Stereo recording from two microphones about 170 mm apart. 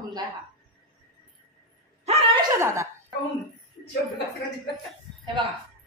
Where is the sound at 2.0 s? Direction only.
40° right (ahead or behind).